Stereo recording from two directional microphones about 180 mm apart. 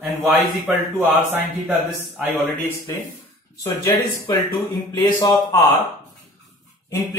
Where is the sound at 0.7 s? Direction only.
10° right (ahead or behind).